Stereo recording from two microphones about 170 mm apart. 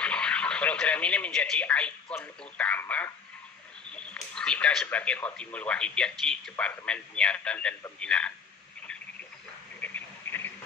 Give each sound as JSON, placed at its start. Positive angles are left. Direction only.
{"t": 0.0, "sound": "speech", "side_deg": 5}
{"t": 9.8, "sound": "radio", "side_deg": 10}